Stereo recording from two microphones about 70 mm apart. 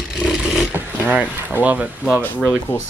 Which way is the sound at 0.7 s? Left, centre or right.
Right.